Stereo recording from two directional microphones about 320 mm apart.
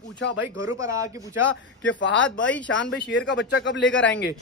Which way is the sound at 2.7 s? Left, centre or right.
Left.